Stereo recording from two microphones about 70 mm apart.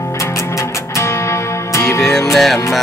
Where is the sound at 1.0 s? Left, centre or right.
Left.